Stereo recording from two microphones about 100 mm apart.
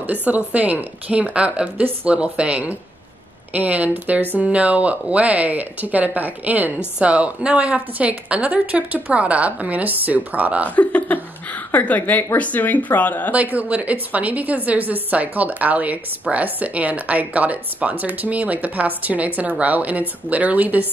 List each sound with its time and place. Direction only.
0.0 s speech: 15° right (ahead or behind)
10.8 s speech: 15° left (ahead or behind)
13.3 s speech: 15° right (ahead or behind)